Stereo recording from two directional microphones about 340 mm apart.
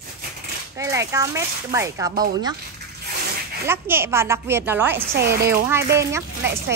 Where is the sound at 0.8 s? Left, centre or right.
Centre.